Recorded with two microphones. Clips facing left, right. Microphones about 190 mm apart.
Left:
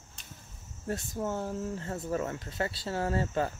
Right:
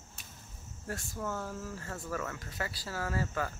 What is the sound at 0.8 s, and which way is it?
Speech, 20° left (ahead or behind).